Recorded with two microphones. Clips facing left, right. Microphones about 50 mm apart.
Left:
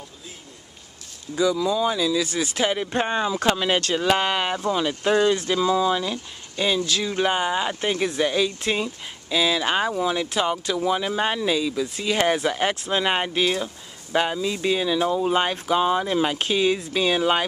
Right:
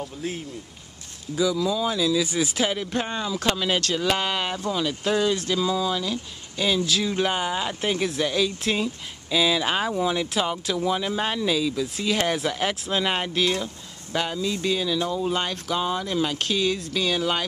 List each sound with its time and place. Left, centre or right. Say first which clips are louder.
0.0 s speech: right 11 dB; right
1.3 s speech: left 2 dB; centre
2.2 s speech: right 1 dB; centre
2.6 s speech: left 2 dB; centre